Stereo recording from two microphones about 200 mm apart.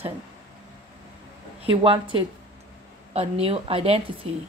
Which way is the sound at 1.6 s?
25° right (ahead or behind).